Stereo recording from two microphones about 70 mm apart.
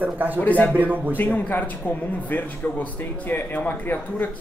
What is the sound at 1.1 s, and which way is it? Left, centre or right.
Speech, left.